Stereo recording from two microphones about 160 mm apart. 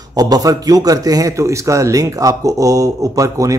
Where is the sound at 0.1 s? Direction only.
25° right (ahead or behind).